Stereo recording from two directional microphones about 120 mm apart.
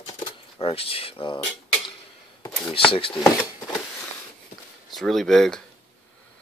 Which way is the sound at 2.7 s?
50° left (ahead or behind).